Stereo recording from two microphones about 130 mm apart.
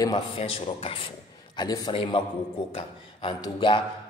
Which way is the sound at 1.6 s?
35° left (ahead or behind).